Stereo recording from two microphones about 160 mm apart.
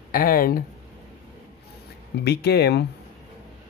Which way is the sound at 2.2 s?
90° left.